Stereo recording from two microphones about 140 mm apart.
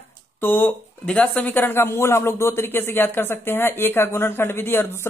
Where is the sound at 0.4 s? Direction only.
15° left (ahead or behind).